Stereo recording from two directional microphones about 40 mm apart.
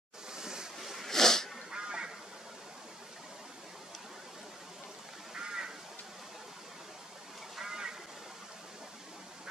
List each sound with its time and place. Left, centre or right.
0.3 s waves: centre
0.7 s snort: centre
1.0 s a sound: centre
1.7 s duck: right
5.3 s quack: centre
7.6 s a sound: centre